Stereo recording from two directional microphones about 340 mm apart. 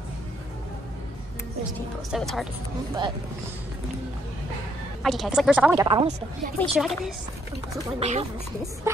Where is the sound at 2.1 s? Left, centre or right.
Centre.